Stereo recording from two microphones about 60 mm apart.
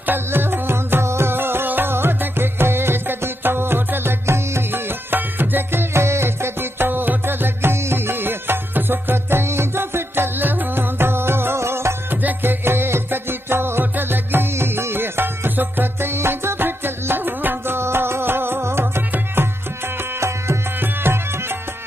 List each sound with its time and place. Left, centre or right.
0.0 s music: right
12.2 s music: right
20.0 s music: right